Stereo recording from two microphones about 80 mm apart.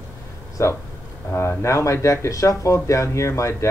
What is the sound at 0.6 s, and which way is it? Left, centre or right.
Speech, left.